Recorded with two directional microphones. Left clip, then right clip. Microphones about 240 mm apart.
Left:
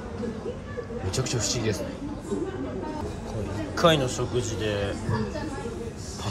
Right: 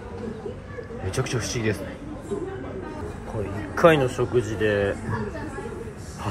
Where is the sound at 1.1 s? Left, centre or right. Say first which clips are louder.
Right 1 dB; centre.